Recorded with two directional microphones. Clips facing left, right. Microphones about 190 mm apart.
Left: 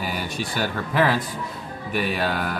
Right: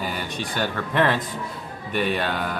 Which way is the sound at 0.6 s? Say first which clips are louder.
Even; 5° left (ahead or behind).